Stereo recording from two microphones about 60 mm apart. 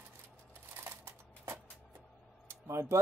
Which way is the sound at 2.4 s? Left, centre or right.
Right.